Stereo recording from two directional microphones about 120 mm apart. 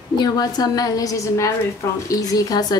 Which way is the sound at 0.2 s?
35° left (ahead or behind).